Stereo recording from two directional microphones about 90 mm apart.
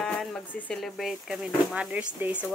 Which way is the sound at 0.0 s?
5° left (ahead or behind).